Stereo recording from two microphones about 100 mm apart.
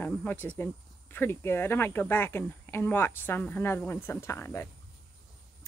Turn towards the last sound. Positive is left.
turn(degrees=25)  # may be behind; listen again after turning